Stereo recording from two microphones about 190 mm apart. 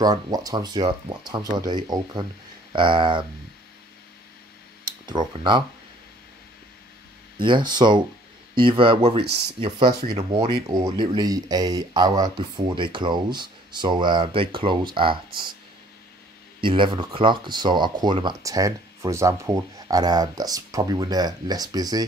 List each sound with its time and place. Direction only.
0.0 s speech: 20° right (ahead or behind)
4.8 s speech: 25° right (ahead or behind)
7.3 s speech: 25° right (ahead or behind)
16.6 s speech: 25° right (ahead or behind)